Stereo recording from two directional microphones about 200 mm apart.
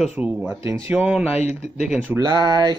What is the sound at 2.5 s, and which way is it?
Mantra, 20° right (ahead or behind).